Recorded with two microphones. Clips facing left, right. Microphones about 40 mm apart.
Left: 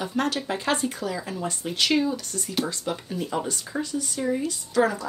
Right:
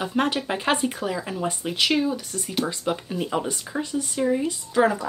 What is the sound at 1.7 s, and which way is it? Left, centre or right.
Speech, centre.